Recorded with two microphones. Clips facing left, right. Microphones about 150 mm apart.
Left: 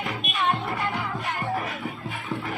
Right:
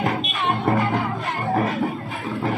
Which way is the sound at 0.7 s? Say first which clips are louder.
Right 8 dB; 45° right (ahead or behind).